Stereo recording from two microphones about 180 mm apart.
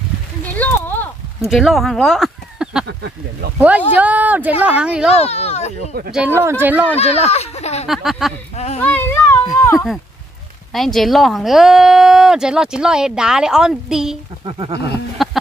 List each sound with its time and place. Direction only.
0.6 s a sound: 10° left (ahead or behind)
1.5 s speech: centre (ahead or behind)
2.9 s speech: 65° right (ahead or behind)
3.6 s speech: 10° right (ahead or behind)
5.1 s speech: 35° left (ahead or behind)
6.1 s speech: 10° right (ahead or behind)
7.0 s speech: 35° left (ahead or behind)
7.9 s speech: centre (ahead or behind)
8.5 s speech: 35° left (ahead or behind)
8.8 s a child's voice: 10° left (ahead or behind)
10.7 s speech: centre (ahead or behind)
14.4 s speech: 25° right (ahead or behind)
15.2 s speech: centre (ahead or behind)